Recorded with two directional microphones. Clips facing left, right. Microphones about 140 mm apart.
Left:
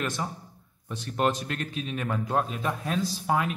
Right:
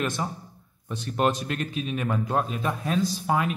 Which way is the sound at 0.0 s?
20° right (ahead or behind).